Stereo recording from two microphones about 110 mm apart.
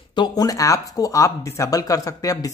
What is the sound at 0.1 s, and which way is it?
Speech, 40° left (ahead or behind).